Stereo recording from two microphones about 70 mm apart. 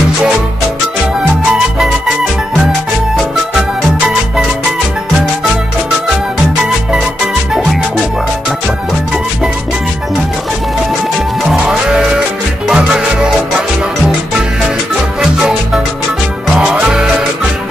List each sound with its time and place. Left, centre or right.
12.7 s music: centre
15.1 s music: centre